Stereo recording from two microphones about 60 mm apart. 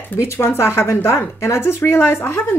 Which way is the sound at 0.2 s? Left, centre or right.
Left.